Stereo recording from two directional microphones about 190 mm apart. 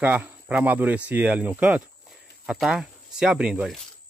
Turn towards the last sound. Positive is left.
turn(degrees=-5)  # may be behind; listen again after turning